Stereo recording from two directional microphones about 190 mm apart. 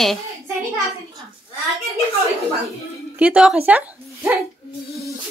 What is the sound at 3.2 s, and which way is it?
Speech, 5° right (ahead or behind).